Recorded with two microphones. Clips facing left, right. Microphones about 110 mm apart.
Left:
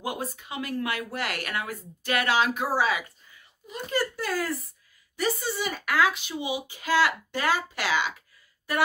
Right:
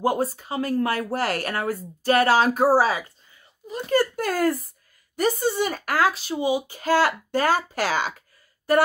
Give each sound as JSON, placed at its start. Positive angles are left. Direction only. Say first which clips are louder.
{"t": 0.0, "sound": "speech", "louder": "right 10 dB", "side_deg": -40}